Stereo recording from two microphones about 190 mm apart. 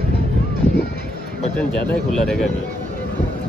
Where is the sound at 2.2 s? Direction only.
Centre (ahead or behind).